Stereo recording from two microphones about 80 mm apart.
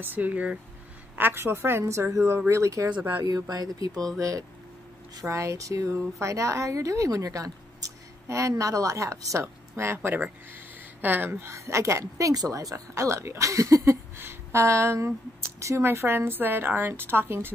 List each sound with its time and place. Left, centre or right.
0.0 s a woman's voice: right
3.0 s a woman's voice: right
3.3 s speech: right
11.4 s a woman's voice: right